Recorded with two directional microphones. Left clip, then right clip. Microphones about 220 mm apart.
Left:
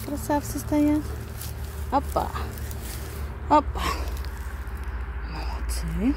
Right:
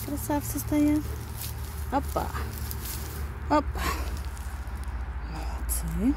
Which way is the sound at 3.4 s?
5° left (ahead or behind).